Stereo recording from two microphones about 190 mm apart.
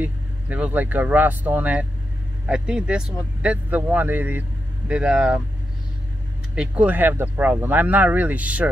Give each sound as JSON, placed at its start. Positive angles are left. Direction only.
{"t": 0.0, "sound": "speech", "side_deg": -10}
{"t": 6.5, "sound": "speech", "side_deg": -5}